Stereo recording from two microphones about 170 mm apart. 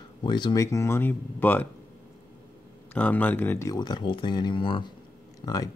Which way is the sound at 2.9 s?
10° left (ahead or behind).